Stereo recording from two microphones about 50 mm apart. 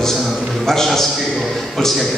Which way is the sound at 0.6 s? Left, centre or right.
Centre.